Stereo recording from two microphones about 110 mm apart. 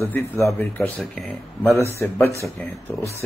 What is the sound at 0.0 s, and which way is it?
Speech, 20° left (ahead or behind).